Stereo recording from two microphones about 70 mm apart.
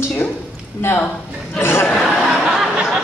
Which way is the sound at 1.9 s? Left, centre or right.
Centre.